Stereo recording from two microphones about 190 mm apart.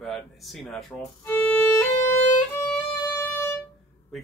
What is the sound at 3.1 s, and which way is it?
Music, 10° left (ahead or behind).